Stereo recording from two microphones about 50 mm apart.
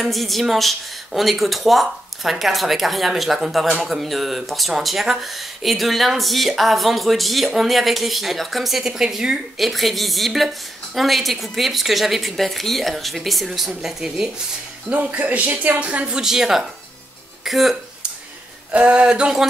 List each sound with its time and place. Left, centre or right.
0.0 s speech: centre
14.9 s speech: right
16.2 s speech: centre
18.7 s music: right